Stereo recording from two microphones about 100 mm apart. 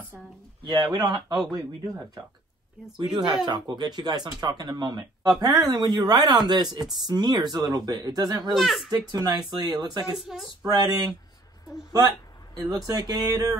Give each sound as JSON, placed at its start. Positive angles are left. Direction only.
{"t": 0.9, "sound": "speech", "side_deg": -45}
{"t": 8.5, "sound": "speech", "side_deg": 0}
{"t": 9.1, "sound": "speech", "side_deg": -40}
{"t": 10.1, "sound": "speech", "side_deg": 0}
{"t": 10.6, "sound": "speech", "side_deg": -40}
{"t": 12.5, "sound": "speech", "side_deg": -40}